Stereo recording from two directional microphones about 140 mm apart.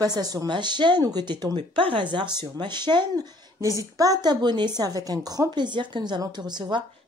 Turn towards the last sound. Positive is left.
turn(degrees=-30)  # may be behind; listen again after turning